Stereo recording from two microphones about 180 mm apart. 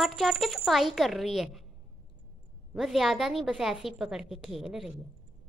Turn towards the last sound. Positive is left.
turn(degrees=0)  # may be behind; listen again after turning